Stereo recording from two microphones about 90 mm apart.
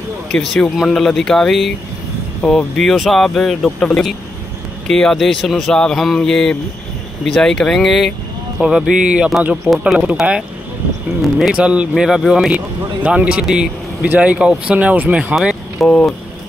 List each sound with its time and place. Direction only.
0.3 s speech: 5° left (ahead or behind); by 9.8 s 20° right (ahead or behind)
11.3 s speech: 5° right (ahead or behind)
12.4 s speech: 15° right (ahead or behind)
15.3 s speech: centre (ahead or behind)